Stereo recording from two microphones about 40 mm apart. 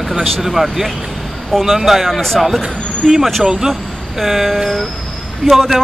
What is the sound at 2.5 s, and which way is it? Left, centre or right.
Speech, centre.